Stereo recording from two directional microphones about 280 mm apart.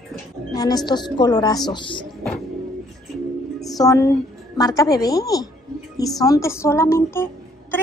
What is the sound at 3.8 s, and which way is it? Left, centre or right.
A woman's voice, centre.